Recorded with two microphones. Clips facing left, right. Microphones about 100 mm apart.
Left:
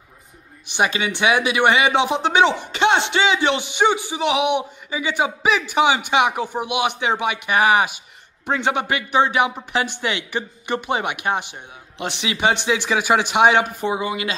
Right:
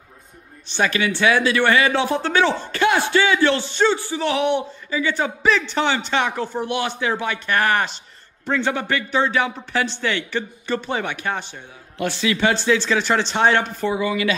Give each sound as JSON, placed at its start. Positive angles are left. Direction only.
{"t": 0.7, "sound": "speech", "side_deg": 15}